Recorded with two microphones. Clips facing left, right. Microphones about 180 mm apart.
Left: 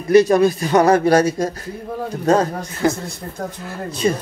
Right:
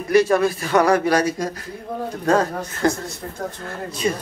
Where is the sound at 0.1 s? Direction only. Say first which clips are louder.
Left 4 dB; 20° left (ahead or behind).